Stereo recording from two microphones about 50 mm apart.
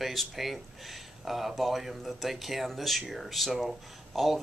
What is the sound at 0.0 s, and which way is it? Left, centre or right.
Speech, centre.